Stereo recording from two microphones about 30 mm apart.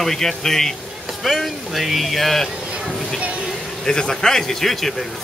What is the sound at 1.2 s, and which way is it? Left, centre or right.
Speech, centre.